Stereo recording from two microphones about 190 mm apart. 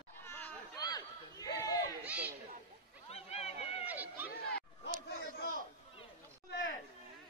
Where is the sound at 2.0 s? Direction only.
10° right (ahead or behind).